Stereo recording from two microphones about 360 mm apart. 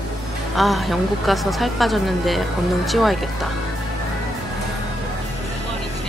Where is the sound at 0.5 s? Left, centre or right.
Centre.